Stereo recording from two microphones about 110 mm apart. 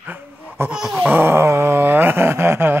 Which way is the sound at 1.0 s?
20° right (ahead or behind).